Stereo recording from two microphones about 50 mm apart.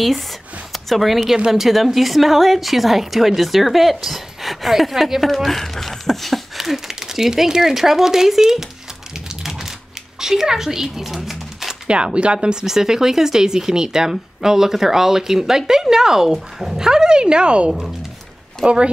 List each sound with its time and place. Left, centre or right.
0.7 s a woman's voice: centre
6.6 s speech: centre
9.3 s typing: centre
10.2 s speech: centre
11.9 s speech: right